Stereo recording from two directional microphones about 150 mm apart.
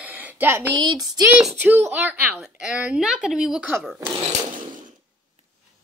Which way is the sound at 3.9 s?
25° right (ahead or behind).